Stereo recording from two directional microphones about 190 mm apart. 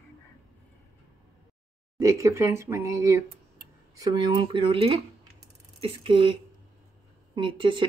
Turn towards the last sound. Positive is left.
turn(degrees=-25)  # may be behind; listen again after turning